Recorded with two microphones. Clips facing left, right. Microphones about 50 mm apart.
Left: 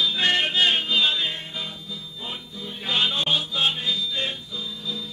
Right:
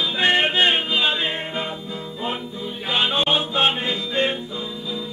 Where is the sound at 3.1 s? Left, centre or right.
Right.